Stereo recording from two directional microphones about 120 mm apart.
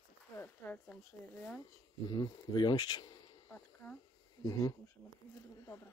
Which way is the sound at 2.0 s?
35° left (ahead or behind).